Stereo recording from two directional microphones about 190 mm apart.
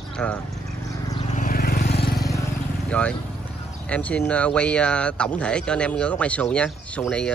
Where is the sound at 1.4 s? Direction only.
50° left (ahead or behind).